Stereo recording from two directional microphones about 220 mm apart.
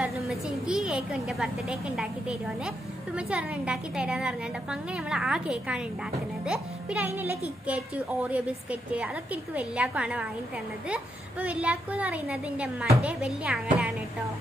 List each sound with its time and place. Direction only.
0.0 s a woman's voice: centre (ahead or behind)